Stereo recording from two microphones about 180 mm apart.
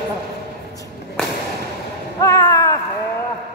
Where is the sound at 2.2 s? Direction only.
20° left (ahead or behind).